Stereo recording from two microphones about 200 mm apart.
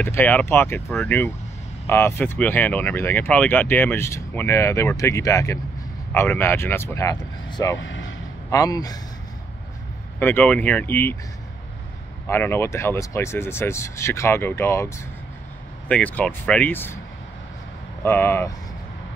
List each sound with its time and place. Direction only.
0.0 s speech: 10° left (ahead or behind)
7.8 s speech: 65° left (ahead or behind)
8.5 s speech: 15° left (ahead or behind)
10.1 s speech: 10° left (ahead or behind)
12.3 s speech: 10° left (ahead or behind)
15.9 s speech: 10° left (ahead or behind)
18.0 s speech: 10° left (ahead or behind)